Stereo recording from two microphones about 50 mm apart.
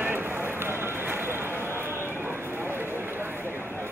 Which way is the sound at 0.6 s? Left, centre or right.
Right.